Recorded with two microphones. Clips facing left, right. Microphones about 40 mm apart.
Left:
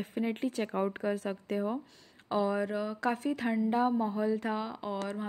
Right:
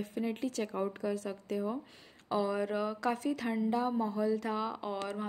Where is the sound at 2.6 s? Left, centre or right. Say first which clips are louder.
Even; centre.